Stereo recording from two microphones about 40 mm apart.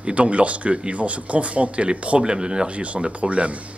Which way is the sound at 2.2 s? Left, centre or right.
Right.